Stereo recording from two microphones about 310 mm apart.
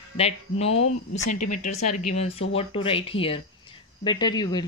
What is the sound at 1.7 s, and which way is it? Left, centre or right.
Speech, left.